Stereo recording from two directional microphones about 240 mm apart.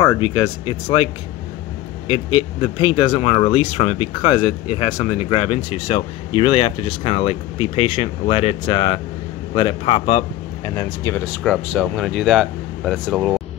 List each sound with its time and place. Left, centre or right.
0.0 s a man's voice: centre